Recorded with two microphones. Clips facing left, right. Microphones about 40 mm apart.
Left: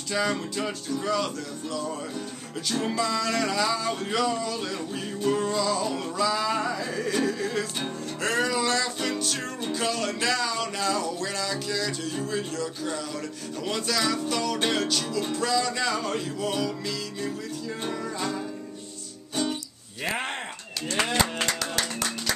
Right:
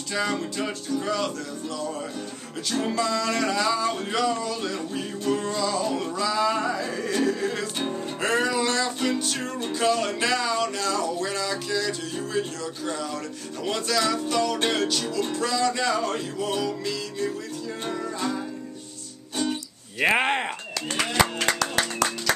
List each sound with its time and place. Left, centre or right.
0.1 s music: centre
20.0 s speech: right